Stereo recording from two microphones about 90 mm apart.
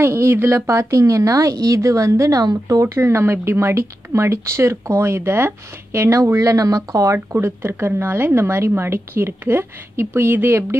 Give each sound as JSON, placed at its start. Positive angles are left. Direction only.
{"t": 0.0, "sound": "a woman's voice", "side_deg": -30}